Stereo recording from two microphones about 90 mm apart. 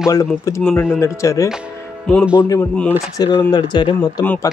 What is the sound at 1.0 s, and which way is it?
Speech, 35° left (ahead or behind).